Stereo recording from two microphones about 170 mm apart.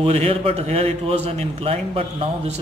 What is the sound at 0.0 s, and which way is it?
A man's voice, 35° right (ahead or behind).